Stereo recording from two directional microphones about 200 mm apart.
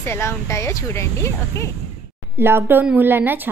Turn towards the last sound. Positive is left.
turn(degrees=-10)  # may be behind; listen again after turning